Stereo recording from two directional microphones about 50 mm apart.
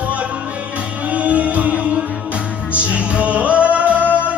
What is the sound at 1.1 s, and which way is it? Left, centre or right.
Music, right.